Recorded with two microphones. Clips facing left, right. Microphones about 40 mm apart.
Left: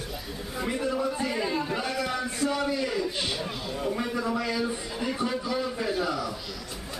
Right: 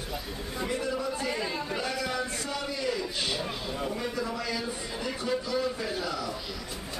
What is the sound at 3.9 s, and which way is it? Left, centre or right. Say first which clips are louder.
A man's voice: left 3 dB; centre.